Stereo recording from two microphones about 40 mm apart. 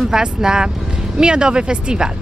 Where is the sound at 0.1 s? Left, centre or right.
Centre.